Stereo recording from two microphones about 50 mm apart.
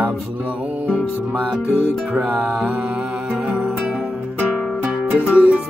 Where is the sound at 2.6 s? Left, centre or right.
Centre.